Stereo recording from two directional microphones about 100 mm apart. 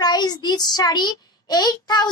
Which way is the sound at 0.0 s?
45° left (ahead or behind).